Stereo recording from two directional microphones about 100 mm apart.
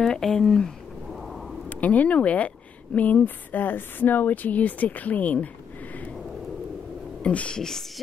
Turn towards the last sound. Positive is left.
turn(degrees=5)  # may be behind; listen again after turning